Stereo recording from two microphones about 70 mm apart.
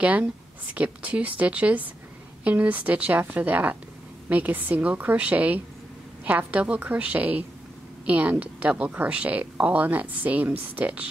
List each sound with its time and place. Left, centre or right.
0.0 s speech: right